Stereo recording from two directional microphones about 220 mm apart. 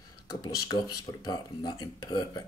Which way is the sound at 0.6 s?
20° left (ahead or behind).